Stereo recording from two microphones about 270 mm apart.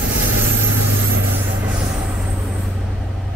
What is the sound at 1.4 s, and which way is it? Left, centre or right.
Vehicle, centre.